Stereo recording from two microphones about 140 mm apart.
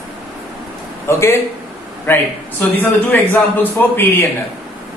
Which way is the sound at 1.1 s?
20° left (ahead or behind).